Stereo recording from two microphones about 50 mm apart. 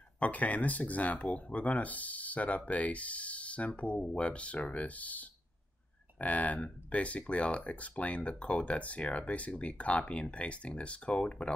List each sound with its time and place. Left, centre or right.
0.2 s speech: left